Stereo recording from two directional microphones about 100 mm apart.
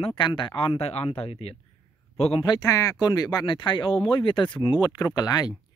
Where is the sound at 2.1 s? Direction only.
90° left.